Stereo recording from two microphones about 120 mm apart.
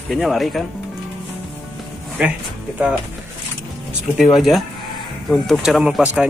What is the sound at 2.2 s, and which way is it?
Speech, 10° right (ahead or behind).